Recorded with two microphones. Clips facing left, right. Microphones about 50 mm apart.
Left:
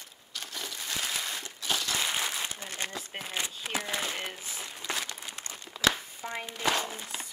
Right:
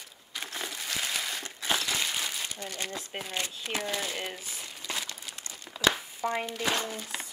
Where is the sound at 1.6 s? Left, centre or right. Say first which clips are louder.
Right 2 dB; centre.